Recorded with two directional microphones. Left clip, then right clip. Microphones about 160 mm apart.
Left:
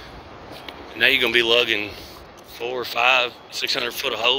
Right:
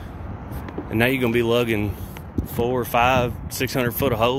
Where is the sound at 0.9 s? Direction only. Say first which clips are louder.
Left 3 dB; 20° right (ahead or behind).